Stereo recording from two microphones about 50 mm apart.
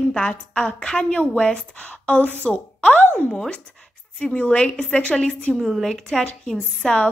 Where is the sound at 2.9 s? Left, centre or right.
Left.